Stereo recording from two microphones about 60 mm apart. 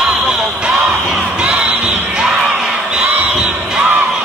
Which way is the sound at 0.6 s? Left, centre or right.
Centre.